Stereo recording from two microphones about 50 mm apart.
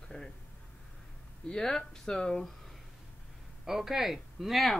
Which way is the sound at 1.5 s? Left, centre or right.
Centre.